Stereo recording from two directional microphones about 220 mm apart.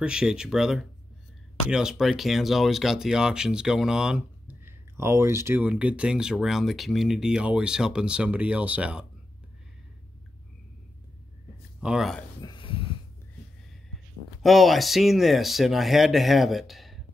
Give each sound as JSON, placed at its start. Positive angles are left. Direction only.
{"t": 0.0, "sound": "speech", "side_deg": -5}
{"t": 11.8, "sound": "speech", "side_deg": 0}
{"t": 12.4, "sound": "a sound", "side_deg": 20}
{"t": 14.4, "sound": "speech", "side_deg": 0}